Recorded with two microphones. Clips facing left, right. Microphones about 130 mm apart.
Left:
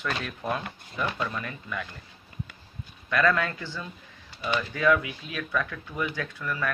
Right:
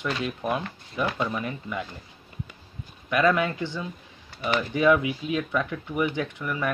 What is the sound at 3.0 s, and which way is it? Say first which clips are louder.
Speech: right 2 dB; 20° right (ahead or behind).